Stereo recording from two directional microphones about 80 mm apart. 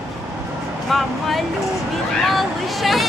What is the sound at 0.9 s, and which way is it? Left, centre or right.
Vehicle, centre.